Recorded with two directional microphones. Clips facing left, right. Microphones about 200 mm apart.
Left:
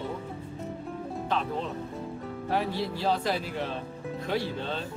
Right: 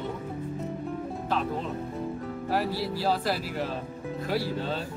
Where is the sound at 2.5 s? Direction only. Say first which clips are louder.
Right 1 dB; 5° right (ahead or behind).